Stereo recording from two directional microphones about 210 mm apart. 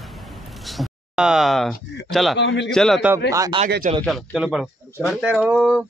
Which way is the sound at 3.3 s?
15° right (ahead or behind).